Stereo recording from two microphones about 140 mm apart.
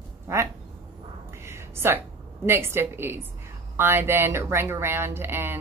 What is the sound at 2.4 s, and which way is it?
A woman's voice, 15° right (ahead or behind).